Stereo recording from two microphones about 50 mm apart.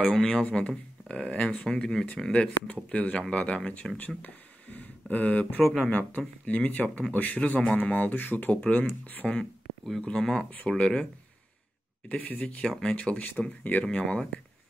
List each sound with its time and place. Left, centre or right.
0.1 s speech: left
4.2 s a sound: left
5.8 s speech: left
10.0 s speech: centre
12.1 s speech: left